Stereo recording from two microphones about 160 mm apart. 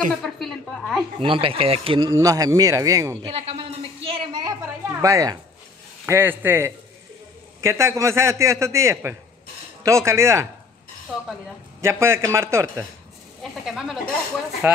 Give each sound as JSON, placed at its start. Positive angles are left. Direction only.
{"t": 0.1, "sound": "a woman's voice", "side_deg": 0}
{"t": 1.2, "sound": "speech", "side_deg": -35}
{"t": 3.3, "sound": "a sound", "side_deg": -35}
{"t": 6.0, "sound": "a man's voice", "side_deg": -15}
{"t": 11.8, "sound": "a man's voice", "side_deg": -15}
{"t": 13.4, "sound": "speech", "side_deg": -5}